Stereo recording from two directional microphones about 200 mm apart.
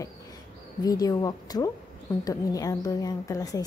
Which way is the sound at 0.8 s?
20° left (ahead or behind).